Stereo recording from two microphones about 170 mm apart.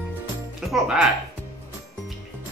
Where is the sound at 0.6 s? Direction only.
5° right (ahead or behind).